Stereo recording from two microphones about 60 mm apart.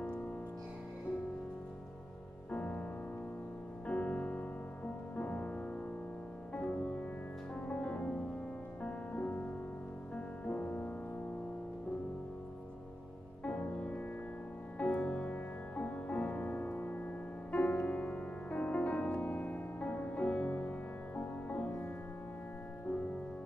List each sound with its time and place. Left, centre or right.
0.0 s music: centre
2.5 s music: left
13.4 s music: left